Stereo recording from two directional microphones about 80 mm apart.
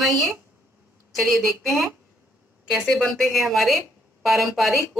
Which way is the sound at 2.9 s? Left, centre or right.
Centre.